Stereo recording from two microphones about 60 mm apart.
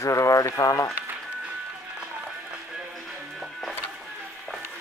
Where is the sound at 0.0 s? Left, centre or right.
Left.